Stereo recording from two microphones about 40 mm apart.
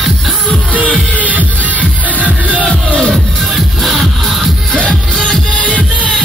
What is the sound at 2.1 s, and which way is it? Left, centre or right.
Music, right.